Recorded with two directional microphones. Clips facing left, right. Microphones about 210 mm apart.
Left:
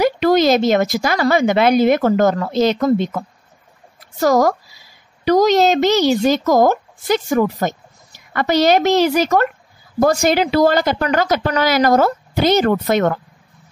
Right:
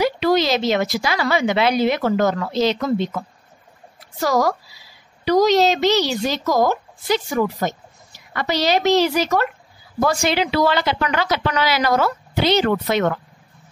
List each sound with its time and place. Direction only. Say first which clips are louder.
0.0 s a woman's voice: left 4 dB; 50° left (ahead or behind)